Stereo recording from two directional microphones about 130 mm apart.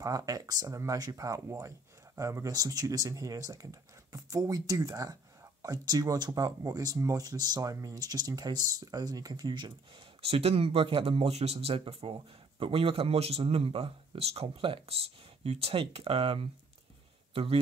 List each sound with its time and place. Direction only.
0.0 s speech: 30° right (ahead or behind)
10.2 s speech: 50° right (ahead or behind)